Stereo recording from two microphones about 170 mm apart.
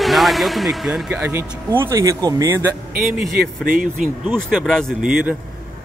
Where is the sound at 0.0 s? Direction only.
Centre (ahead or behind); by 2.7 s 15° right (ahead or behind).